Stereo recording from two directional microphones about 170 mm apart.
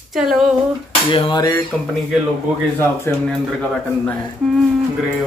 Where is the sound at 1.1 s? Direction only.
25° left (ahead or behind).